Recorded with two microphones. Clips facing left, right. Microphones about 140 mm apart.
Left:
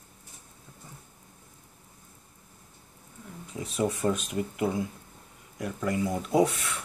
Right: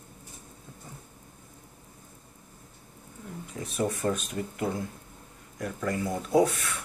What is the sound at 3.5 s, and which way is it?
Speech, 20° left (ahead or behind).